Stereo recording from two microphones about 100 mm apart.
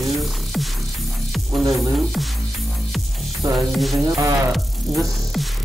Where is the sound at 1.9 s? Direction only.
Centre (ahead or behind).